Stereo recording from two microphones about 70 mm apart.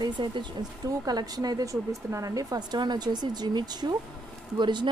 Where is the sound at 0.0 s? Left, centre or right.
Right.